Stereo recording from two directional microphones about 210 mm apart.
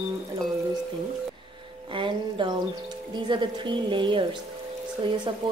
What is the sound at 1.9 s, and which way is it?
Music, 25° right (ahead or behind).